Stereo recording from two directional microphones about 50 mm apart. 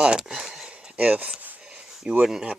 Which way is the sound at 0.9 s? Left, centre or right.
Right.